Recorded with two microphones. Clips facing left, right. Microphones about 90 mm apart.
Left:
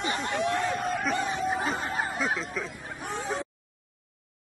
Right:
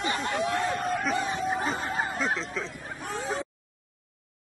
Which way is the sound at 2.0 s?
Centre (ahead or behind).